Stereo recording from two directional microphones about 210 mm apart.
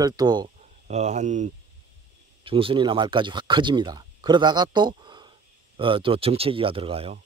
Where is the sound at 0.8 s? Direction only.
35° right (ahead or behind).